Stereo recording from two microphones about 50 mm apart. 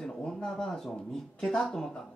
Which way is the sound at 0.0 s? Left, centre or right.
Centre.